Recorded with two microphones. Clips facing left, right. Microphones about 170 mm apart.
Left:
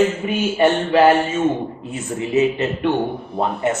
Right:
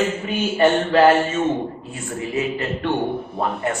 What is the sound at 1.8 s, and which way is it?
A man's voice, 20° left (ahead or behind).